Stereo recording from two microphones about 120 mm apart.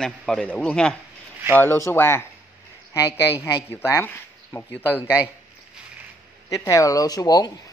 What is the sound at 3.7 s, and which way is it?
Speech, 20° left (ahead or behind).